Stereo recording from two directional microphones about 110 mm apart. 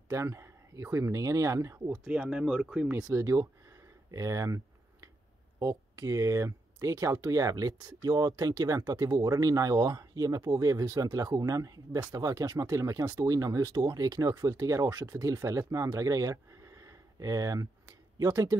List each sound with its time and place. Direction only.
0.1 s speech: 25° right (ahead or behind)
2.0 s speech: 10° right (ahead or behind)
3.0 s speech: 30° right (ahead or behind)
5.6 s speech: 30° right (ahead or behind)